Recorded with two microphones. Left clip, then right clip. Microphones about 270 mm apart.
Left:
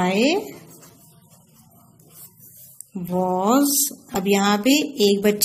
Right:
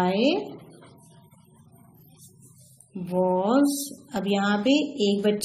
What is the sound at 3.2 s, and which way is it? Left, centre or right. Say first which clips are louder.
A woman's voice: left 3 dB; left.